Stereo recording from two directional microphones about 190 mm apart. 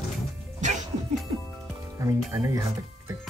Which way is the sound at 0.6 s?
40° right (ahead or behind).